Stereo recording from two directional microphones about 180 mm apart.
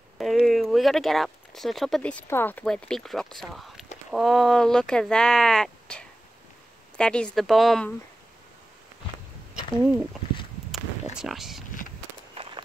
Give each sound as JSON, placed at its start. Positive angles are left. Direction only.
{"t": 0.2, "sound": "speech", "side_deg": 0}
{"t": 11.1, "sound": "a sound", "side_deg": 0}
{"t": 12.4, "sound": "walk", "side_deg": -35}